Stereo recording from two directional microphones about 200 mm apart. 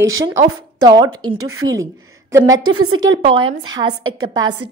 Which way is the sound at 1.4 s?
90° right.